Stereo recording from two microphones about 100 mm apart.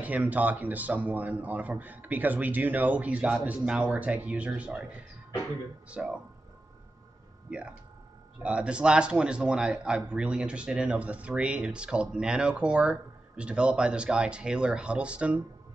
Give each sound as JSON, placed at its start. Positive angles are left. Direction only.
{"t": 0.0, "sound": "a man's voice", "side_deg": -15}
{"t": 5.9, "sound": "a man's voice", "side_deg": -10}
{"t": 8.4, "sound": "a man's voice", "side_deg": -10}